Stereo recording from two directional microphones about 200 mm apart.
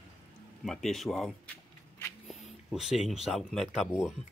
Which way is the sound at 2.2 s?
Centre (ahead or behind).